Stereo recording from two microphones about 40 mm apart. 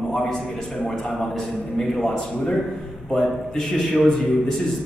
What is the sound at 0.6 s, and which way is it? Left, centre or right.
Speech, centre.